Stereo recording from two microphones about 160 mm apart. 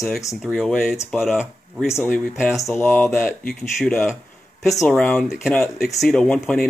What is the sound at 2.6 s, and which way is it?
Speech, 15° left (ahead or behind).